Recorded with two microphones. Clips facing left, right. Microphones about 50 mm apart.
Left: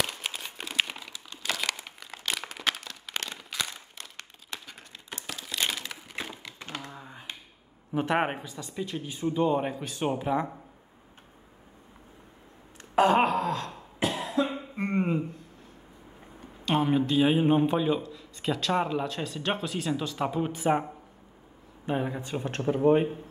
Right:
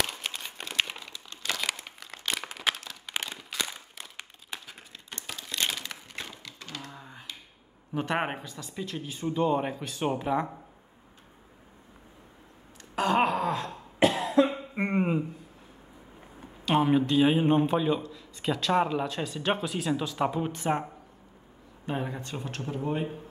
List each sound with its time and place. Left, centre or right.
0.0 s crumpling: centre
5.1 s a sound: centre
6.2 s typewriter: left
6.9 s computer keyboard: centre
7.9 s a man's voice: centre
12.9 s wail: centre
13.2 s wail: centre
13.9 s cough: right
14.8 s a sound: centre
16.6 s a man's voice: centre
21.8 s speech: centre
22.4 s speech: left